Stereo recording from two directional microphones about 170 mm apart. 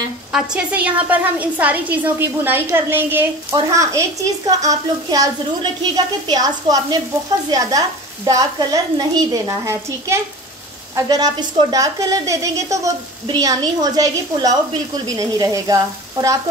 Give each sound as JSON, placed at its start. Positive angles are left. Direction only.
{"t": 0.3, "sound": "a woman's voice", "side_deg": -5}
{"t": 8.3, "sound": "a woman's voice", "side_deg": -20}